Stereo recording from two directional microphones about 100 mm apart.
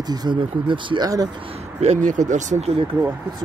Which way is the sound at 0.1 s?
45° right (ahead or behind).